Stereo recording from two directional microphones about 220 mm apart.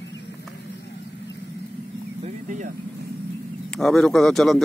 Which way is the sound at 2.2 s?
35° right (ahead or behind).